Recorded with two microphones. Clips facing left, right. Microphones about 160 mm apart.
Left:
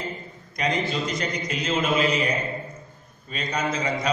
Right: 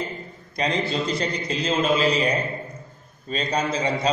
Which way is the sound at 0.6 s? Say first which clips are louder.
Right 1 dB; 30° right (ahead or behind).